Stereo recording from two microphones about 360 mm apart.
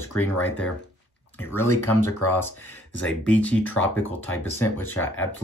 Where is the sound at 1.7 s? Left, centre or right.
Left.